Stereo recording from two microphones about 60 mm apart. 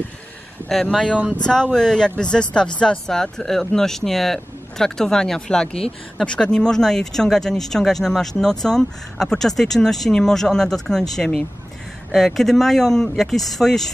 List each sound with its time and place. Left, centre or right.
0.7 s speech: centre
1.0 s speech: right
1.3 s speech: centre